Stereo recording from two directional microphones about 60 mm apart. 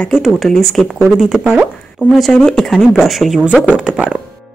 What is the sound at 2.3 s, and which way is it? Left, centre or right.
Speech, centre.